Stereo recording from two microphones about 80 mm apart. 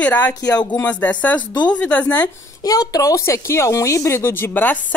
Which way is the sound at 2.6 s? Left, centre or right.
Left.